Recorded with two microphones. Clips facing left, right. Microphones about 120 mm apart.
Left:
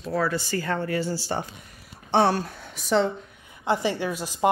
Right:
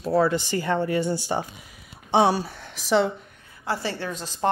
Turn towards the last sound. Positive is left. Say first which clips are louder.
# left 2 dB
turn(degrees=10)  # may be behind; listen again after turning